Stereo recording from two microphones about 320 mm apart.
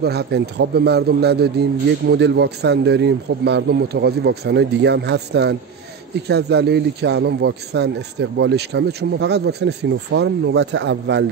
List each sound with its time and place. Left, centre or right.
0.0 s a man's voice: right